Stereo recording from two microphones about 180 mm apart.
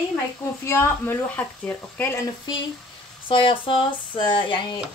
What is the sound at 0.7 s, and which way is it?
Speech, 15° left (ahead or behind).